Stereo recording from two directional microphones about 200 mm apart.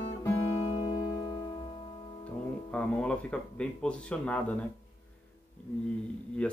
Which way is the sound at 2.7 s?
5° left (ahead or behind).